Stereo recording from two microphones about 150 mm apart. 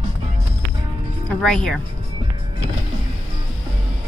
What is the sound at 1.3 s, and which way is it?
Speech, 5° left (ahead or behind).